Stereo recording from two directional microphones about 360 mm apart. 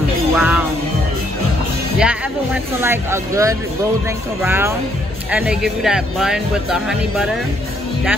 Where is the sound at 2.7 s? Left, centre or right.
Centre.